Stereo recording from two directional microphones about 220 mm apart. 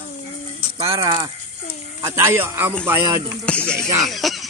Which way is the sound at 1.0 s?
20° right (ahead or behind).